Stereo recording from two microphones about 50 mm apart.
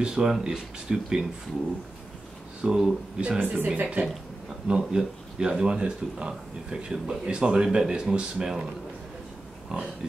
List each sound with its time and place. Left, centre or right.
0.0 s speech: centre
2.6 s speech: centre
3.2 s speech: right
4.6 s speech: centre
9.7 s speech: centre